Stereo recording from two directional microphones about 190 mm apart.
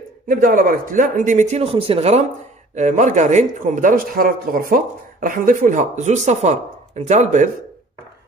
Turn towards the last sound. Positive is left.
turn(degrees=-40)  # may be behind; listen again after turning